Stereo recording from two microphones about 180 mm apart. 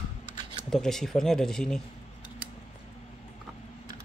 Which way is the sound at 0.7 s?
Centre (ahead or behind).